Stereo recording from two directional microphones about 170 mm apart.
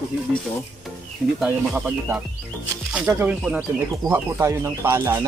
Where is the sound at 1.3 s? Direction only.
10° right (ahead or behind).